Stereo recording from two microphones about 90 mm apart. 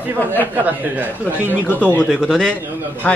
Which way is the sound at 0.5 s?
20° right (ahead or behind).